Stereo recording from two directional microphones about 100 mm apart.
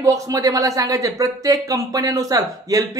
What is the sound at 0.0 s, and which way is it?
Speech, 35° right (ahead or behind).